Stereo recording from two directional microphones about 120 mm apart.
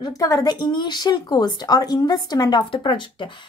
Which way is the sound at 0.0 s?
30° left (ahead or behind).